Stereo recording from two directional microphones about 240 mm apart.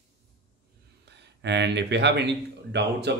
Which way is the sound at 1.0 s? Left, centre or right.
Right.